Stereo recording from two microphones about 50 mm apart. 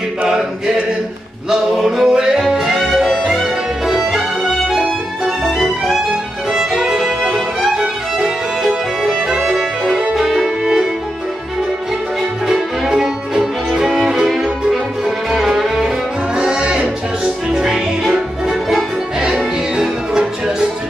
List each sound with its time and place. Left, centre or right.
0.3 s a sound: centre
1.5 s music: centre
10.1 s violin: centre
10.6 s music: centre
12.4 s music: centre
16.3 s music: centre
19.1 s music: centre